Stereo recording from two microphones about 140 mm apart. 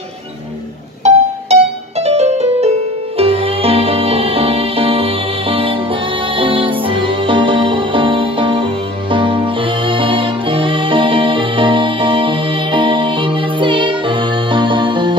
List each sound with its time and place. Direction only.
1.0 s music: 50° right (ahead or behind)